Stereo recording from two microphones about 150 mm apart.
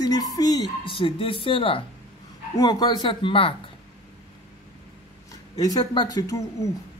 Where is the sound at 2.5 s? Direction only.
25° left (ahead or behind).